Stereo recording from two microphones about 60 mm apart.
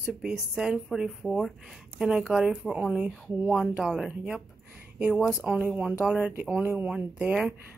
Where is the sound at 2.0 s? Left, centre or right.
Centre.